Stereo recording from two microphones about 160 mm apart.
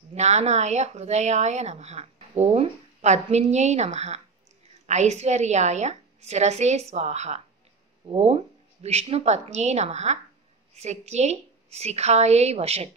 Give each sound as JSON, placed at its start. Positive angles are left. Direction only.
{"t": 0.1, "sound": "speech", "side_deg": -45}